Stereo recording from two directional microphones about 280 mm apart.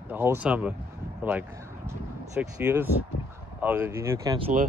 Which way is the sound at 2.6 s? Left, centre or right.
Centre.